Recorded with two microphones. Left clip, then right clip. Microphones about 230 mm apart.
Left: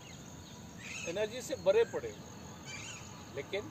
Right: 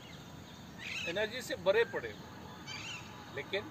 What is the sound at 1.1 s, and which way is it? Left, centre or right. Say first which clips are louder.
Speech: left 2 dB; centre.